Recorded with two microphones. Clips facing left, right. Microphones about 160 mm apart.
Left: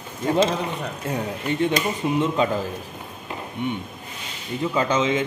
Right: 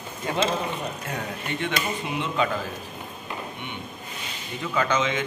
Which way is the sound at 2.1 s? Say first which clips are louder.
Left 4 dB; 35° left (ahead or behind).